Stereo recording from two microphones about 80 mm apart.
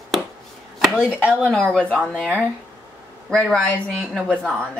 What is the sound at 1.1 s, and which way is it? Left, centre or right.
Speech, centre.